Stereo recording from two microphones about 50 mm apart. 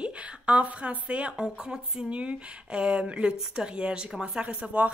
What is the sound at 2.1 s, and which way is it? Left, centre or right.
A woman's voice, right.